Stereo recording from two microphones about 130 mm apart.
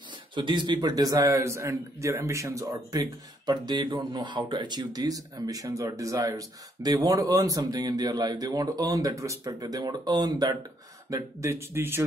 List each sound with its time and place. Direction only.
0.3 s a man's voice: 35° right (ahead or behind); by 12.0 s 20° right (ahead or behind)